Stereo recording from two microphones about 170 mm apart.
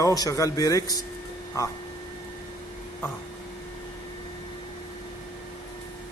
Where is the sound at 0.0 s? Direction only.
20° left (ahead or behind).